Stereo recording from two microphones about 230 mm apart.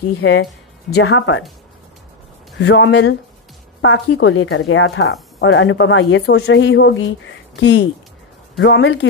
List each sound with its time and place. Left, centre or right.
0.2 s speech: left
2.6 s a woman's voice: left